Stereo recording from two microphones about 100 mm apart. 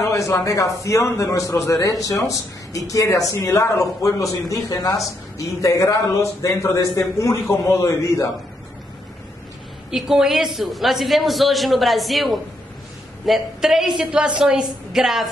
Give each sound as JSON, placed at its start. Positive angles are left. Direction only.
{"t": 0.0, "sound": "a man's voice", "side_deg": 30}
{"t": 9.8, "sound": "a woman's voice", "side_deg": -5}